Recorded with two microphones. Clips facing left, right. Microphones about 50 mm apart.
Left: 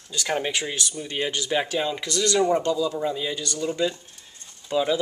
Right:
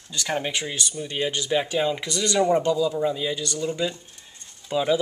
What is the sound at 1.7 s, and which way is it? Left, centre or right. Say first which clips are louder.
Speech: right 2 dB; centre.